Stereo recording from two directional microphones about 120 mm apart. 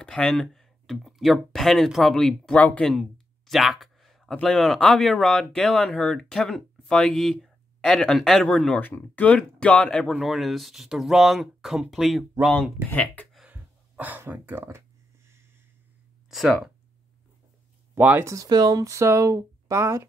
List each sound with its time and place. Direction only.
0.0 s speech: 5° left (ahead or behind)
12.9 s speech: 10° left (ahead or behind)
13.5 s a sound: 15° right (ahead or behind)
16.3 s speech: centre (ahead or behind)
17.9 s speech: 15° right (ahead or behind)
18.3 s speech: 30° right (ahead or behind)